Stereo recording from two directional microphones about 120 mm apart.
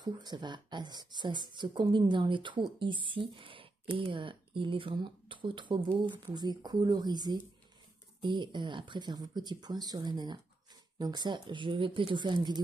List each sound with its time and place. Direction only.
0.0 s speech: 35° right (ahead or behind)